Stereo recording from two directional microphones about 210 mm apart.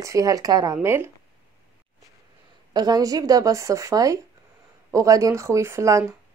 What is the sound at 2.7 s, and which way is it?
A woman's voice, 20° right (ahead or behind).